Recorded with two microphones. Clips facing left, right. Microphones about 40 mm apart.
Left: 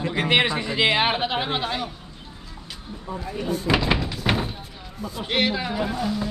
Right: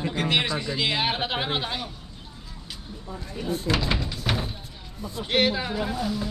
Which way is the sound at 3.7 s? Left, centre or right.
Centre.